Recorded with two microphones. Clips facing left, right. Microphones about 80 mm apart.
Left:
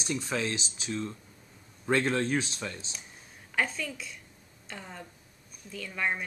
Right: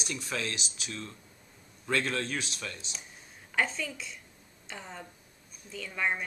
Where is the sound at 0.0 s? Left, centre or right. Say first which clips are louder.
Left 4 dB; left.